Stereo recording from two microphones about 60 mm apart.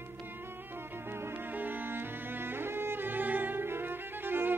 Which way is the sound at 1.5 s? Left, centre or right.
Right.